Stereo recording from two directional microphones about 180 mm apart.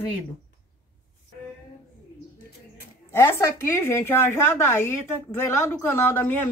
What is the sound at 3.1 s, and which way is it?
Speech, 15° left (ahead or behind).